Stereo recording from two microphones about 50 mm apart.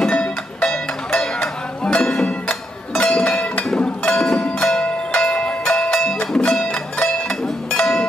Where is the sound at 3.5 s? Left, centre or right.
Left.